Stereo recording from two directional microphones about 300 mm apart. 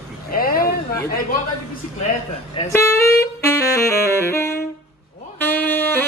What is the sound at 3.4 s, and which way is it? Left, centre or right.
Saxophone, centre.